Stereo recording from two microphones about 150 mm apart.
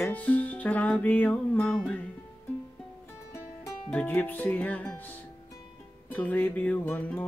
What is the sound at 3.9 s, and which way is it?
Music, 10° left (ahead or behind).